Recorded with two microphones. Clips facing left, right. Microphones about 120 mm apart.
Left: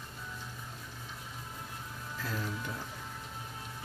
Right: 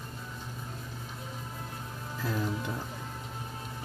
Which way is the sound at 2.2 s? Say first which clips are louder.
Right 6 dB; 25° right (ahead or behind).